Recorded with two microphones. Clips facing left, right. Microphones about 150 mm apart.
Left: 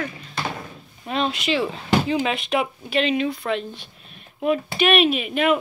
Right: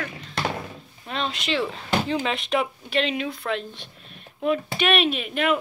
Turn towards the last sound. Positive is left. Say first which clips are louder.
# left 4 dB
turn(degrees=5)  # may be behind; listen again after turning